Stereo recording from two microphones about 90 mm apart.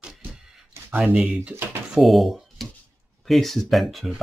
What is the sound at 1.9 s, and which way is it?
Speech, centre (ahead or behind).